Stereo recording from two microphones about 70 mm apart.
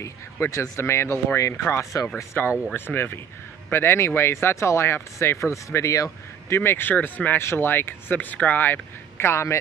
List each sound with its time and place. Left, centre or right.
0.0 s speech: left